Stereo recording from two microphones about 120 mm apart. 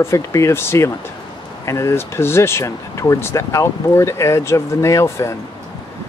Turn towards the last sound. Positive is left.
turn(degrees=25)  # may be behind; listen again after turning